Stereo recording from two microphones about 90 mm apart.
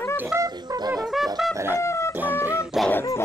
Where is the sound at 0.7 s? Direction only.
50° right (ahead or behind).